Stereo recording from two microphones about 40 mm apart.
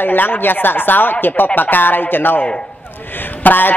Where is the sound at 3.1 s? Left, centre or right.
Left.